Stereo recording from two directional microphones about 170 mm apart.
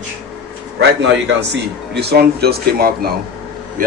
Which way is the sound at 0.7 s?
90° right.